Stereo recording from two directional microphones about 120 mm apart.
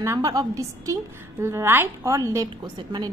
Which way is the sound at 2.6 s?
35° right (ahead or behind).